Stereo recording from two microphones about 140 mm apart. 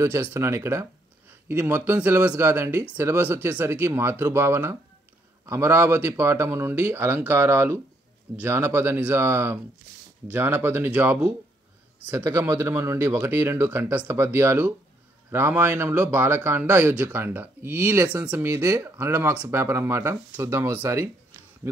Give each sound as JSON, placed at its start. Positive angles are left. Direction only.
{"t": 0.0, "sound": "speech", "side_deg": -20}
{"t": 18.5, "sound": "speech", "side_deg": -25}